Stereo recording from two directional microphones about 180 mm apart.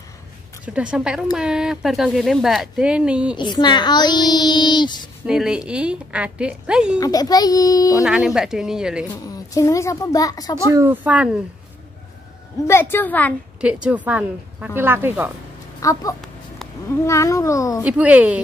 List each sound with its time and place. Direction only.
0.7 s a woman's voice: 5° right (ahead or behind)
3.3 s a woman's voice: 25° left (ahead or behind)
5.2 s a woman's voice: 5° right (ahead or behind)
7.0 s a woman's voice: 20° left (ahead or behind)
8.0 s a woman's voice: 5° right (ahead or behind)
9.1 s a woman's voice: 20° left (ahead or behind)
10.7 s speech: 15° right (ahead or behind)
11.1 s speech: 5° right (ahead or behind)
12.6 s a child's voice: 15° left (ahead or behind)
13.6 s speech: 5° right (ahead or behind)
15.8 s a woman's voice: 20° left (ahead or behind)
17.8 s speech: 5° right (ahead or behind)